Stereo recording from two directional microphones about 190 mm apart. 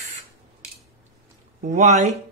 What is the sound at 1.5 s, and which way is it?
Speech, 40° right (ahead or behind).